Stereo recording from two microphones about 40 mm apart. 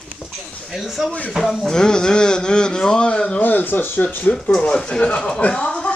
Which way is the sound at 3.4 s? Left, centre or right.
Left.